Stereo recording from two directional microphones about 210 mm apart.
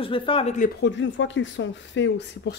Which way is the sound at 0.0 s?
25° left (ahead or behind).